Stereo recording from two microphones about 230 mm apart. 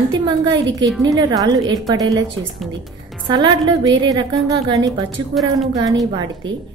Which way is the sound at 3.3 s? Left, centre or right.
Centre.